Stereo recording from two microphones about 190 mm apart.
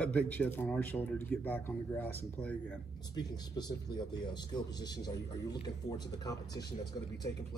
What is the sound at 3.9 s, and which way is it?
Speech, 20° left (ahead or behind).